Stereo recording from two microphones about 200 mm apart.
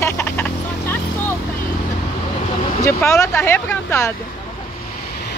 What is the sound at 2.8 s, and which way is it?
Speech, 15° left (ahead or behind).